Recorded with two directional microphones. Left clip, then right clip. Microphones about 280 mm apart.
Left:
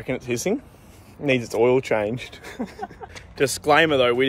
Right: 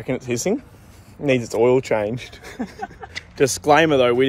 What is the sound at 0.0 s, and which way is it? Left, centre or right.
Speech, centre.